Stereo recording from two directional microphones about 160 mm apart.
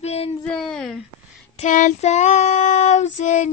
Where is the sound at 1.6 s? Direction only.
50° left (ahead or behind).